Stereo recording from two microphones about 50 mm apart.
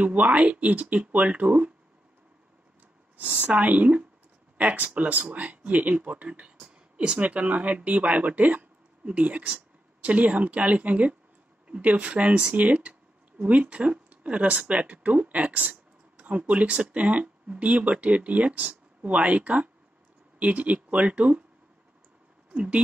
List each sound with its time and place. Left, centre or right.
0.0 s speech: right
3.2 s speech: right
6.2 s speech: right
22.5 s speech: right